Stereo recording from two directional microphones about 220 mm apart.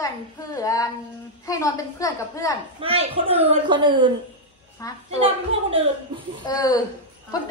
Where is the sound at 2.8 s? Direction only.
25° right (ahead or behind).